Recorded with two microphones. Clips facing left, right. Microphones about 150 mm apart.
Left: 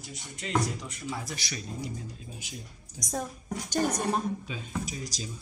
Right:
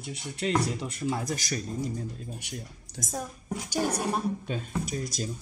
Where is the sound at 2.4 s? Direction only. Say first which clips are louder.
Right 4 dB; 65° right (ahead or behind).